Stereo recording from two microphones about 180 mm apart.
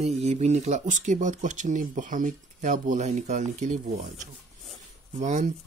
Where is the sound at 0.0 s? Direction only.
35° right (ahead or behind).